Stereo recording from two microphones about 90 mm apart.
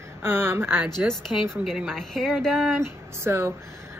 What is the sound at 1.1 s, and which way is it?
A woman's voice, centre (ahead or behind).